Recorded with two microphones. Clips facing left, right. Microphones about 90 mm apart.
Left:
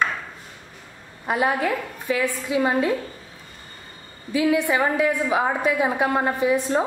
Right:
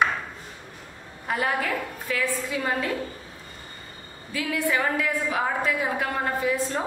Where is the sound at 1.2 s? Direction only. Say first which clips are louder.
Left 4 dB; 20° left (ahead or behind).